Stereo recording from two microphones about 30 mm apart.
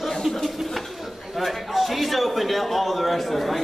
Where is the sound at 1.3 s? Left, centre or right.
Centre.